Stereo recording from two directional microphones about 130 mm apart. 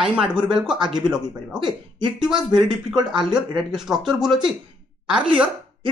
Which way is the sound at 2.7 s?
5° right (ahead or behind).